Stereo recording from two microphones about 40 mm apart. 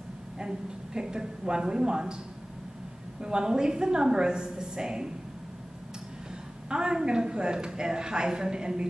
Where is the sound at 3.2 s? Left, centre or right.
Centre.